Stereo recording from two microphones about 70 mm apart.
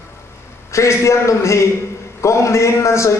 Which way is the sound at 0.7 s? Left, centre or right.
Left.